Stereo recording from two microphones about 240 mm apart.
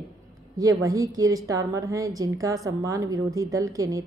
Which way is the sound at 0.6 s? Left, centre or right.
Centre.